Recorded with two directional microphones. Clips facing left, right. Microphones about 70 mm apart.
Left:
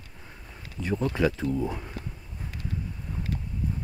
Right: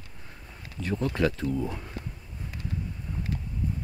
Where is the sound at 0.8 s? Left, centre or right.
Centre.